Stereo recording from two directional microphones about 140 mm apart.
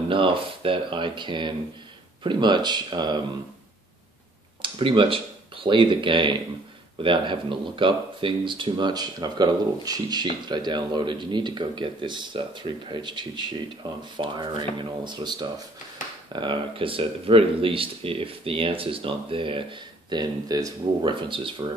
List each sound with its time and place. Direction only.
0.1 s speech: 40° right (ahead or behind)
4.6 s speech: 40° right (ahead or behind)